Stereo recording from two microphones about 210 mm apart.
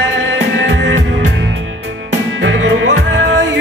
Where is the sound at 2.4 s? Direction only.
60° right (ahead or behind).